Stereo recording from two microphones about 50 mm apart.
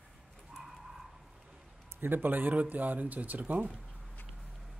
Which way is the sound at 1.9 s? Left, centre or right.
Right.